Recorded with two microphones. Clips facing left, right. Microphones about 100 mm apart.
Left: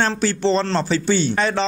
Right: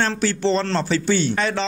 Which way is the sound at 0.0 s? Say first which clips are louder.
Left 1 dB; 30° left (ahead or behind).